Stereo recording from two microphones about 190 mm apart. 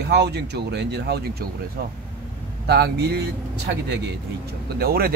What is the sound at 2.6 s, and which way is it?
Speech, 60° right (ahead or behind).